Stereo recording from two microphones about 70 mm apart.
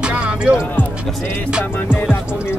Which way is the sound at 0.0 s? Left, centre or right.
Centre.